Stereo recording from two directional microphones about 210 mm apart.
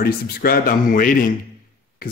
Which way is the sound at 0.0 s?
45° left (ahead or behind).